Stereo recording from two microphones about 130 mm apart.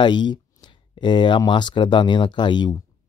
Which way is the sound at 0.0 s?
35° left (ahead or behind).